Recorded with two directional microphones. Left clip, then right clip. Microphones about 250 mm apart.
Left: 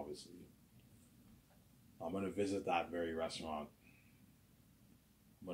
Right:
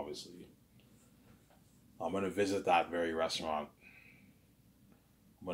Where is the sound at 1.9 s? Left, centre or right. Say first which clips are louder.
Right 6 dB; centre.